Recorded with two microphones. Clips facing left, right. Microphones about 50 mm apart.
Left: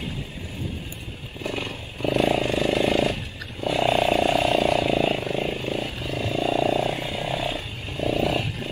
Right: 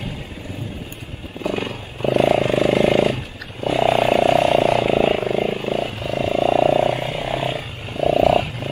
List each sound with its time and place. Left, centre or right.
2.0 s vehicle: centre
3.6 s a sound: centre
5.3 s vehicle: centre
6.0 s purr: centre
8.0 s wild animals: centre